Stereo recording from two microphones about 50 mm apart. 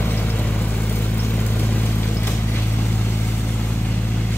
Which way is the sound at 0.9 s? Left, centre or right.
Left.